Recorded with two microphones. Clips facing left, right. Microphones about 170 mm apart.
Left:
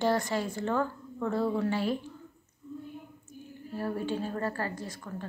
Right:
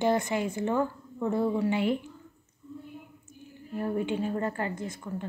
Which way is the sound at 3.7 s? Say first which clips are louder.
Right 3 dB; 20° right (ahead or behind).